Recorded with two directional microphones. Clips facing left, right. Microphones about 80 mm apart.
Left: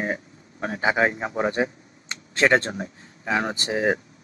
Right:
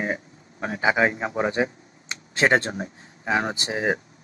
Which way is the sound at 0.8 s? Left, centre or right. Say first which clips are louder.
Right 1 dB; centre.